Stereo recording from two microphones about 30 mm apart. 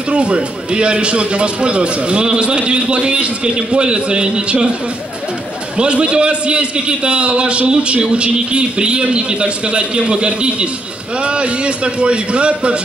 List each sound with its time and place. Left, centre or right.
0.1 s a man's voice: right
5.8 s a man's voice: right